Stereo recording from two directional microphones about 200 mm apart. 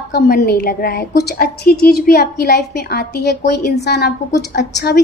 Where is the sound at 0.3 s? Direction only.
50° left (ahead or behind).